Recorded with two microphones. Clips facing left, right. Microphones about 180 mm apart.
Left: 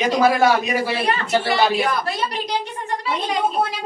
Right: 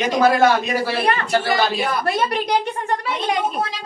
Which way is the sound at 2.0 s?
60° right (ahead or behind).